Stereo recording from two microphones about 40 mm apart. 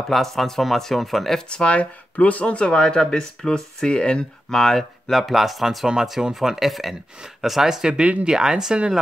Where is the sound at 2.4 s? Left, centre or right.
Left.